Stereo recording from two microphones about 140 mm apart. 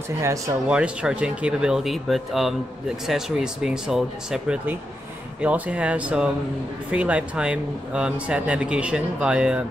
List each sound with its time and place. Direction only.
0.2 s speech: 25° right (ahead or behind)
0.7 s speech: 5° right (ahead or behind)